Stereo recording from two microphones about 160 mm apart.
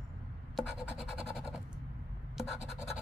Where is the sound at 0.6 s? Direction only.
Centre (ahead or behind).